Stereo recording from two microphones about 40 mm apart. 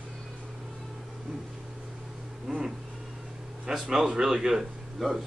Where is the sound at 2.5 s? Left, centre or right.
Centre.